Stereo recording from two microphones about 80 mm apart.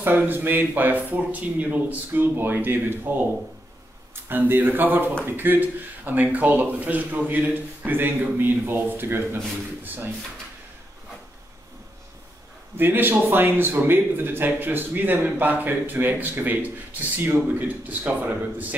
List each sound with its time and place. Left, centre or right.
0.0 s a man's voice: right
4.1 s a man's voice: right
12.7 s a man's voice: right